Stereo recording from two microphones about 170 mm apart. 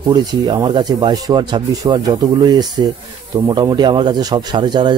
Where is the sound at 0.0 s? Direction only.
25° right (ahead or behind).